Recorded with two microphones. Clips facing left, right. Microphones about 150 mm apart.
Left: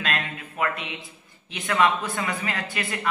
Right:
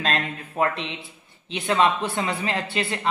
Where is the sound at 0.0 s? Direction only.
30° right (ahead or behind).